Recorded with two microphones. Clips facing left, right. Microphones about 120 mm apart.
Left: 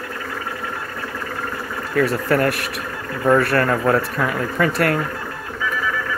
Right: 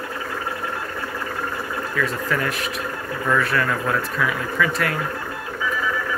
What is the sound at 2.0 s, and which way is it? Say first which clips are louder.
Speech: left 6 dB; 55° left (ahead or behind).